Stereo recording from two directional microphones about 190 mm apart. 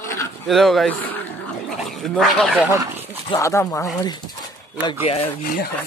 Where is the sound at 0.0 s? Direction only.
15° left (ahead or behind).